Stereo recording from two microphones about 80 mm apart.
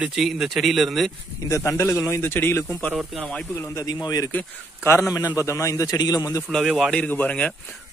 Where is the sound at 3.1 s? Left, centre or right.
Centre.